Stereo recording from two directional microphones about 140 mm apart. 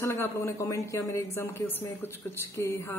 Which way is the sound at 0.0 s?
20° left (ahead or behind).